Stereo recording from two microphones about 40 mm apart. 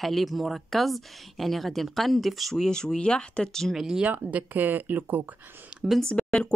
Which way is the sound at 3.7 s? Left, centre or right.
Centre.